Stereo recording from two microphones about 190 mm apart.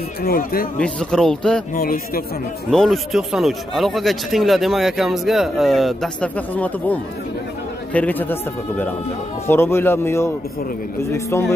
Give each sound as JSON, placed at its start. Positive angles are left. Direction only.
{"t": 0.2, "sound": "speech", "side_deg": 50}
{"t": 0.7, "sound": "speech", "side_deg": 5}
{"t": 1.8, "sound": "speech", "side_deg": 50}
{"t": 2.7, "sound": "speech", "side_deg": 0}